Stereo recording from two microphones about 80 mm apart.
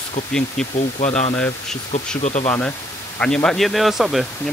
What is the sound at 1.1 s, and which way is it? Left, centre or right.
Speech, centre.